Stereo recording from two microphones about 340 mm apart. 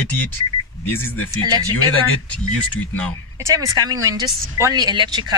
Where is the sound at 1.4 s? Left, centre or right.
Centre.